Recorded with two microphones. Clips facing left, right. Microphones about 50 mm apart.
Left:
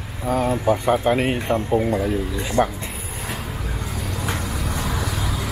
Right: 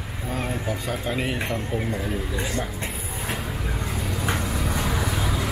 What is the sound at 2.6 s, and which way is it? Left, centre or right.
Speech, left.